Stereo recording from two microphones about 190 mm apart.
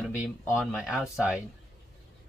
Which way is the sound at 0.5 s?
5° right (ahead or behind).